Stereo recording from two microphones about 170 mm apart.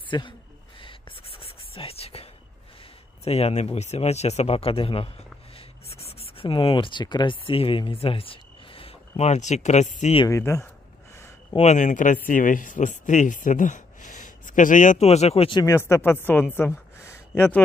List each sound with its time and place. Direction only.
0.1 s speech: 25° left (ahead or behind)
0.7 s whispering: 30° left (ahead or behind)
3.3 s speech: 35° left (ahead or behind)
10.1 s speech: 20° left (ahead or behind)
11.5 s speech: 45° left (ahead or behind)
15.6 s a woman's voice: 15° left (ahead or behind)